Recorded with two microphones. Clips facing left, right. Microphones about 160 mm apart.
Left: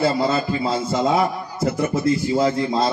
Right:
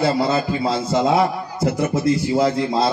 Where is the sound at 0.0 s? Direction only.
15° right (ahead or behind).